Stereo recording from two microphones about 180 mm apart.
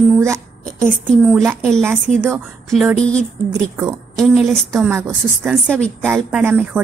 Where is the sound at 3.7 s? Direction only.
20° right (ahead or behind).